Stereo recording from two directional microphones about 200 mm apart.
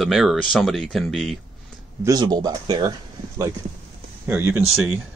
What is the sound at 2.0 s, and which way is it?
Speech, 20° right (ahead or behind).